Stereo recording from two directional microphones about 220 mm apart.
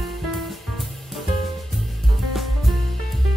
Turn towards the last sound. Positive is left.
turn(degrees=0)  # may be behind; listen again after turning